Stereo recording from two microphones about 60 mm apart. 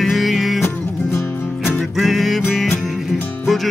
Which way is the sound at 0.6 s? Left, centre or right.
Left.